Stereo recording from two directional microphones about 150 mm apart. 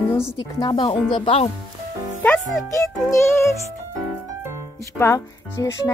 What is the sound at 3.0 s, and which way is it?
Speech, 20° left (ahead or behind).